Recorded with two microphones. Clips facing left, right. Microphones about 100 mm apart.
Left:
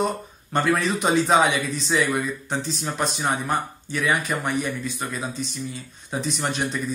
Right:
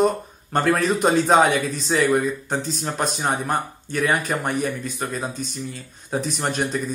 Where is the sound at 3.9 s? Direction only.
40° right (ahead or behind).